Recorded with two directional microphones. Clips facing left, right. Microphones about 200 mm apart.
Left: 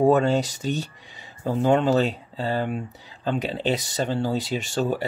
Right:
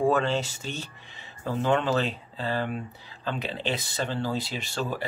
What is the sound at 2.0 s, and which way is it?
Speech, 45° left (ahead or behind).